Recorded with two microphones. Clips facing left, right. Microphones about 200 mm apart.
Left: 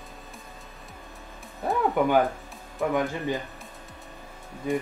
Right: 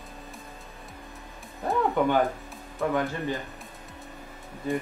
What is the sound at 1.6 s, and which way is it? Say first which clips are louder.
Music: left 1 dB; 10° left (ahead or behind).